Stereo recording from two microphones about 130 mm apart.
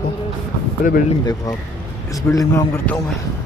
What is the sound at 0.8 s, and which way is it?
Speech, 90° left.